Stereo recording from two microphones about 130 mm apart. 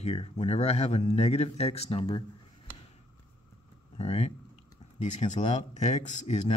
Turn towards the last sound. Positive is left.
turn(degrees=60)  # may be behind; listen again after turning